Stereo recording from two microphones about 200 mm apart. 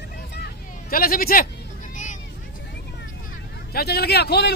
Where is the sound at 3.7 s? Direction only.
55° left (ahead or behind).